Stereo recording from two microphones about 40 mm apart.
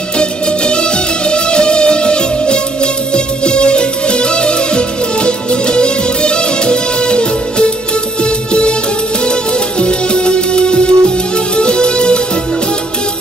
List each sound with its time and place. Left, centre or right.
0.2 s music: left